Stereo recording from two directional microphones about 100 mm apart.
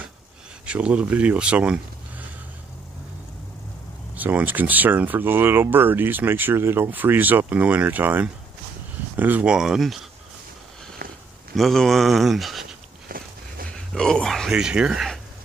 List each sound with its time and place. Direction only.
0.7 s speech: 10° right (ahead or behind)
4.1 s speech: 15° right (ahead or behind)
11.5 s speech: centre (ahead or behind)
13.7 s speech: 5° left (ahead or behind)
14.5 s speech: 10° right (ahead or behind)